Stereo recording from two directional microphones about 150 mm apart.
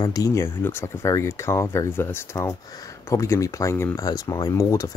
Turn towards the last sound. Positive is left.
turn(degrees=20)  # may be behind; listen again after turning